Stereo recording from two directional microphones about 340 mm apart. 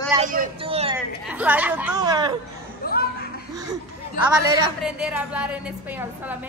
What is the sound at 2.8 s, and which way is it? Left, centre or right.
Chuckle, left.